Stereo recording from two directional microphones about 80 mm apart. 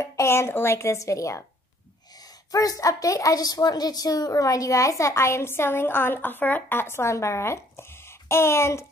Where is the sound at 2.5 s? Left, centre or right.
Left.